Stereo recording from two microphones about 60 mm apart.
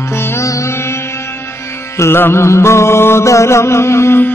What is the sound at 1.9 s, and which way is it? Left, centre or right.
Mantra, left.